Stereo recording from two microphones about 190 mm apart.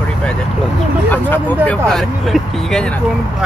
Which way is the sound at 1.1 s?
10° left (ahead or behind).